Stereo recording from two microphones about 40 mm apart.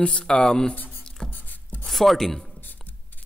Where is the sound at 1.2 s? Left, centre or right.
Left.